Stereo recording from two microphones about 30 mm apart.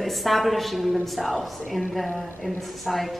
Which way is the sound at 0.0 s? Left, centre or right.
Centre.